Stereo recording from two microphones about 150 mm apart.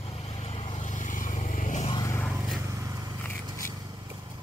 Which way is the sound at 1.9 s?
20° left (ahead or behind).